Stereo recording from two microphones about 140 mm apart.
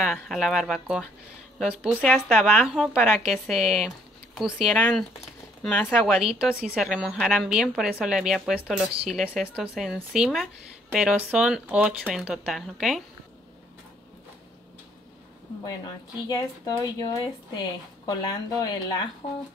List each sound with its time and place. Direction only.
0.0 s speech: centre (ahead or behind)
6.1 s speech: 5° right (ahead or behind)
15.6 s speech: 25° left (ahead or behind)